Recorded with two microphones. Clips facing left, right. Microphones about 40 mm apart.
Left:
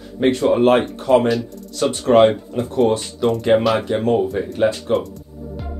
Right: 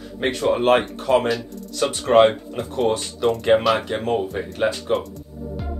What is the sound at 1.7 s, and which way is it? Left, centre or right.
Speech, right.